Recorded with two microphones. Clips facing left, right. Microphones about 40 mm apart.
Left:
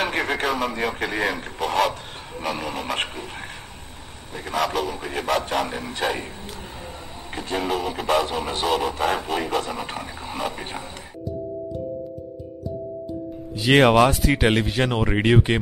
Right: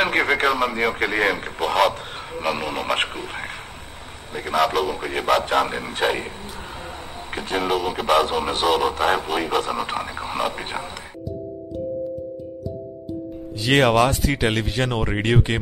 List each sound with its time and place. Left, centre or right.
0.0 s speech: right
4.5 s speech: right
7.3 s speech: right
13.6 s speech: centre